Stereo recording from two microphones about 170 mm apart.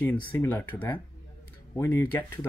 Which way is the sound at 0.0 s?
10° left (ahead or behind).